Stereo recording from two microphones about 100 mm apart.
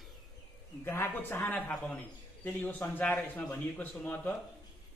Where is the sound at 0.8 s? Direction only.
20° left (ahead or behind).